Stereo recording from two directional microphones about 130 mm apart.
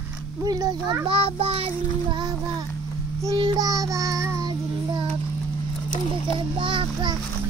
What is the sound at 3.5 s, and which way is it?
Child singing, 25° right (ahead or behind).